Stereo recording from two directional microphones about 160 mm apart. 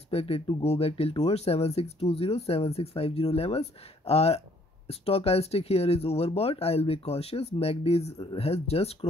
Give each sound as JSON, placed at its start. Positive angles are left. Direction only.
{"t": 0.1, "sound": "speech", "side_deg": 40}